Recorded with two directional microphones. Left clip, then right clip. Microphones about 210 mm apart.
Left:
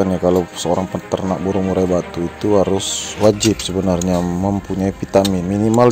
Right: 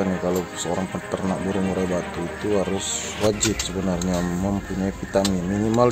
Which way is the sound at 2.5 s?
30° left (ahead or behind).